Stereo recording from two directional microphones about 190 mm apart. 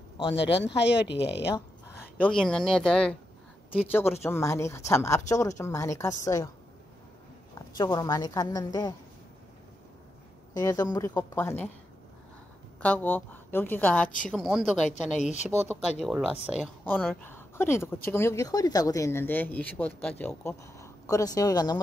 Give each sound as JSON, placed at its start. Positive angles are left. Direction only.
{"t": 0.2, "sound": "a woman's voice", "side_deg": 30}
{"t": 0.7, "sound": "speech", "side_deg": 65}
{"t": 1.5, "sound": "speech", "side_deg": 10}
{"t": 7.7, "sound": "a woman's voice", "side_deg": 20}
{"t": 10.5, "sound": "speech", "side_deg": 20}
{"t": 12.8, "sound": "speech", "side_deg": 10}
{"t": 15.1, "sound": "speech", "side_deg": 35}
{"t": 16.0, "sound": "speech", "side_deg": -5}
{"t": 16.8, "sound": "speech", "side_deg": 5}